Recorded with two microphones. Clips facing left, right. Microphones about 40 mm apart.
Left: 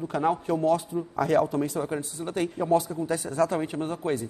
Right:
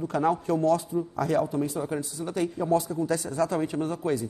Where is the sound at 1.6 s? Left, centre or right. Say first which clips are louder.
Left 1 dB; left.